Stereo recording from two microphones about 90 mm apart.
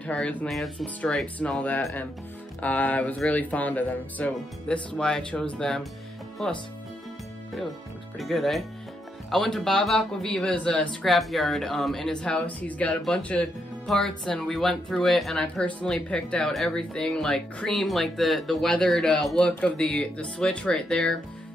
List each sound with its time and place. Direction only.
0.0 s speech: 15° left (ahead or behind)
0.5 s speech: centre (ahead or behind)
1.2 s speech: 15° left (ahead or behind)
8.2 s speech: centre (ahead or behind)
11.1 s speech: centre (ahead or behind)